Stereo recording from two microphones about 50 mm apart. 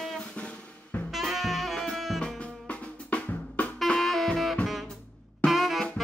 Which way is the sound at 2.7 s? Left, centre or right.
Left.